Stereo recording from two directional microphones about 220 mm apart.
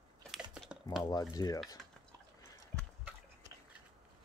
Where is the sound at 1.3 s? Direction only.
15° left (ahead or behind).